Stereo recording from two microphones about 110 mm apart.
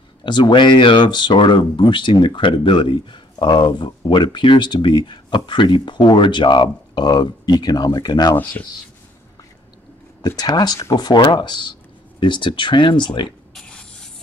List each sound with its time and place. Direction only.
0.2 s speech: 45° left (ahead or behind)
10.2 s speech: 40° left (ahead or behind)
13.6 s a sound: 10° left (ahead or behind)